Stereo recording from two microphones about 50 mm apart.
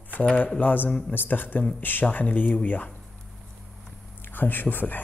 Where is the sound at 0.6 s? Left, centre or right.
Left.